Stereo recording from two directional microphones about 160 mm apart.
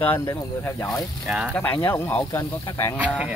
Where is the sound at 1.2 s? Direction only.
5° right (ahead or behind).